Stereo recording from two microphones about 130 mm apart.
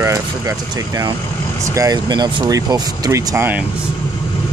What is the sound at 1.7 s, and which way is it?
Speech, 25° right (ahead or behind).